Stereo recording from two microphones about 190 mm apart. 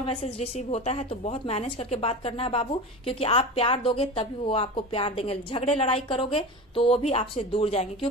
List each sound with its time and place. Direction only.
0.0 s a woman's voice: 35° left (ahead or behind)